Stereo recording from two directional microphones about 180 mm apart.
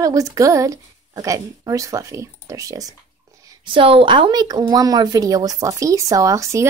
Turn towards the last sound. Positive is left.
turn(degrees=-15)  # may be behind; listen again after turning